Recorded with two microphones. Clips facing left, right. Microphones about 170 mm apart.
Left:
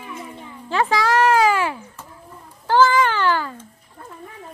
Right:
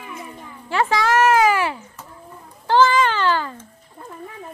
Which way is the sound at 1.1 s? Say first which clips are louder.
Right 1 dB; 10° right (ahead or behind).